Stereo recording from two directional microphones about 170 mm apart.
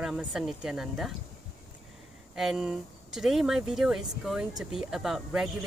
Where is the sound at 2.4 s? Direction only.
5° right (ahead or behind).